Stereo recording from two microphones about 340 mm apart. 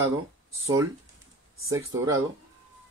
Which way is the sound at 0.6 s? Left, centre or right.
Centre.